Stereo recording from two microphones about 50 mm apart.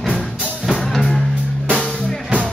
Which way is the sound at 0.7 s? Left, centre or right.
Centre.